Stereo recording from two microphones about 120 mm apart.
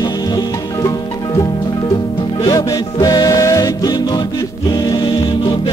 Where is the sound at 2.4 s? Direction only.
30° left (ahead or behind).